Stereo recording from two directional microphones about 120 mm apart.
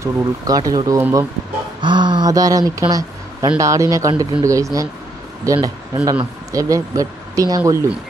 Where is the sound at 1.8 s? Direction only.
40° right (ahead or behind).